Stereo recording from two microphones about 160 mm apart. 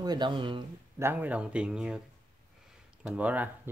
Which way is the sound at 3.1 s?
10° right (ahead or behind).